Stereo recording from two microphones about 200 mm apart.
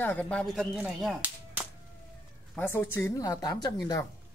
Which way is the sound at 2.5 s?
10° left (ahead or behind).